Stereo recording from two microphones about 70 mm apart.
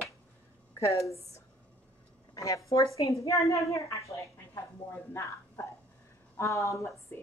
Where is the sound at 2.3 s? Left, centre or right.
Left.